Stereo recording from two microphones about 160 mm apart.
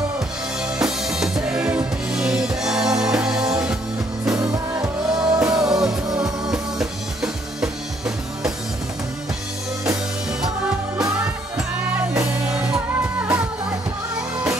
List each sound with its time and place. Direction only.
0.6 s music: 5° right (ahead or behind)
4.3 s music: 25° right (ahead or behind)
5.7 s music: 5° right (ahead or behind)
11.5 s music: 5° right (ahead or behind)